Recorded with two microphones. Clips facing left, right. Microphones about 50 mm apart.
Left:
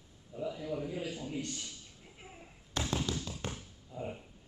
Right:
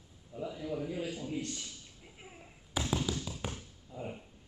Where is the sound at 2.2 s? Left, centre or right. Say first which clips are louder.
Even; centre.